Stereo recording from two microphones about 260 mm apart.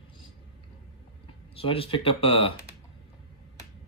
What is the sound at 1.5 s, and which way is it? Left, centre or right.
Speech, left.